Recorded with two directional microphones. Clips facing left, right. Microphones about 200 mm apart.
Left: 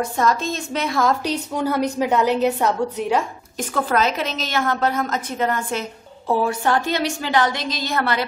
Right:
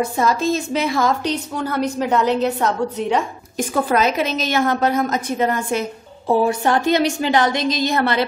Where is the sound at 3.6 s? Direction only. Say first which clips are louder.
Right 3 dB; 10° right (ahead or behind).